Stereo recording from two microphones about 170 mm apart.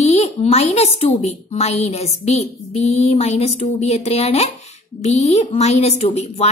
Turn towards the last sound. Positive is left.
turn(degrees=35)  # may be behind; listen again after turning